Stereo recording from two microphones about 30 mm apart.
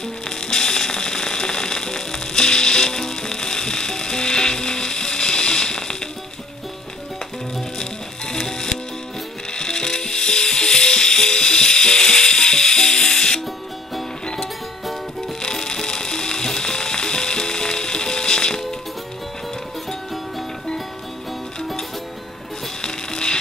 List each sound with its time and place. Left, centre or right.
0.4 s music: left
9.5 s music: left
22.8 s music: left